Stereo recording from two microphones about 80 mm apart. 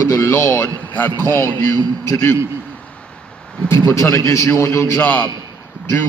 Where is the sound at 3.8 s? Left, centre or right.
Left.